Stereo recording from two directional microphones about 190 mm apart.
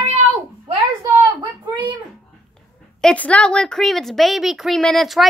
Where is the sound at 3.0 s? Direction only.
5° left (ahead or behind).